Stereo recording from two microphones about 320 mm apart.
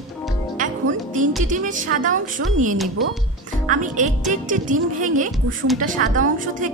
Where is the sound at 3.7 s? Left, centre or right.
Right.